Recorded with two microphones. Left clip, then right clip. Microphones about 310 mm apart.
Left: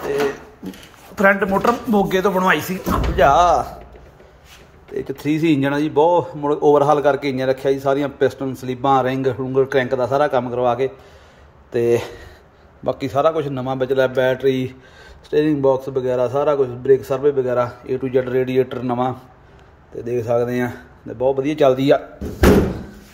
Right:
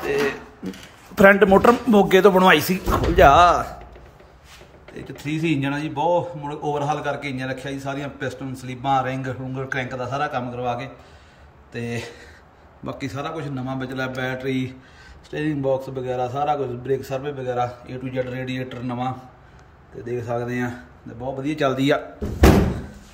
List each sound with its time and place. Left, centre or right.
1.1 s speech: centre
4.9 s speech: centre
20.1 s speech: left
21.4 s speech: centre